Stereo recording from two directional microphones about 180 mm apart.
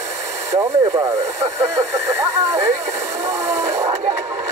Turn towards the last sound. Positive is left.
turn(degrees=-15)  # may be behind; listen again after turning